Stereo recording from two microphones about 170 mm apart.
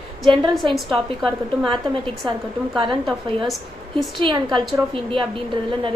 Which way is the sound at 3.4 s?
Centre (ahead or behind).